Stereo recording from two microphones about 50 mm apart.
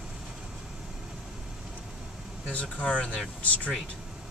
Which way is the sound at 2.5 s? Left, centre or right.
Left.